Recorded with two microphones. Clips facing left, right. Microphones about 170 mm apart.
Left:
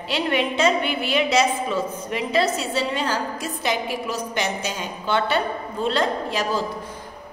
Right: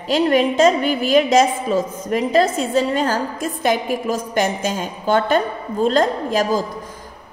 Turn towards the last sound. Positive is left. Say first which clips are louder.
# right 5 dB
turn(degrees=-45)  # may be behind; listen again after turning